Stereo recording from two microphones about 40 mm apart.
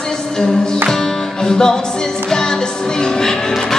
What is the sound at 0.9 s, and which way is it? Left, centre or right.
Music, centre.